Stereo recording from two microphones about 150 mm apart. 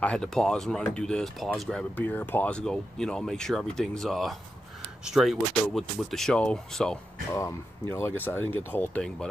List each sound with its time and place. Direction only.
0.0 s speech: 5° left (ahead or behind)
7.9 s speech: 15° left (ahead or behind)